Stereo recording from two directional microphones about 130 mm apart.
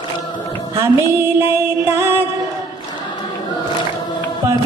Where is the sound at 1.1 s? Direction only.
20° right (ahead or behind).